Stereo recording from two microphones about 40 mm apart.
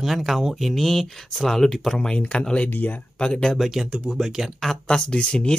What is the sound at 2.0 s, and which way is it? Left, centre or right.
Speech, left.